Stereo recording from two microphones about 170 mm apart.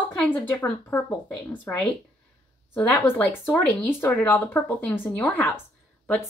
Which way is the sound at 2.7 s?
15° left (ahead or behind).